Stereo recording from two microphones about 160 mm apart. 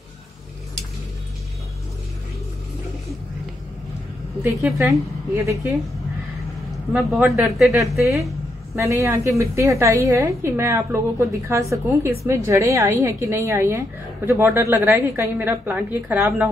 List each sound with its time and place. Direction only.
4.8 s a woman's voice: 20° right (ahead or behind)
6.9 s speech: centre (ahead or behind)
8.7 s a woman's voice: 20° right (ahead or behind)